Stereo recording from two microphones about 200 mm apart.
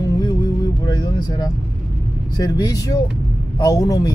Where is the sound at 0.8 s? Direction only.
20° left (ahead or behind).